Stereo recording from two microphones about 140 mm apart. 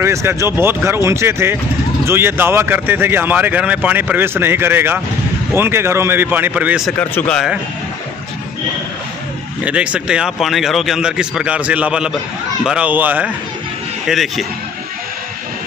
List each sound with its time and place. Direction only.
0.0 s speech: 20° right (ahead or behind)
7.0 s speech: 10° left (ahead or behind)
9.6 s speech: 10° right (ahead or behind)
14.0 s speech: centre (ahead or behind)